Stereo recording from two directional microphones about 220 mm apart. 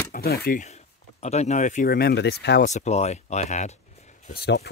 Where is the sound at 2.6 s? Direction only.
30° left (ahead or behind).